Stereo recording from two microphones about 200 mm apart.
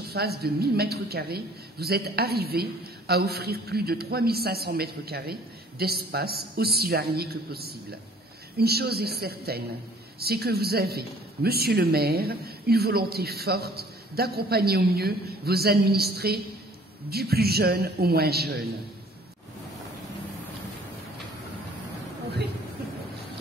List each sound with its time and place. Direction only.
0.1 s a woman's voice: 50° right (ahead or behind)